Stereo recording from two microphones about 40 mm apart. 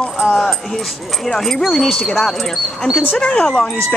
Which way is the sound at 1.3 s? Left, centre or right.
Centre.